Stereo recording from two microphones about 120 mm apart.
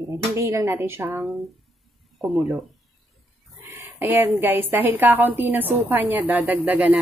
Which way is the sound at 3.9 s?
20° right (ahead or behind).